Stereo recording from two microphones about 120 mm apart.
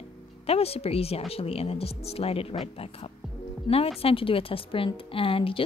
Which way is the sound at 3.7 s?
45° left (ahead or behind).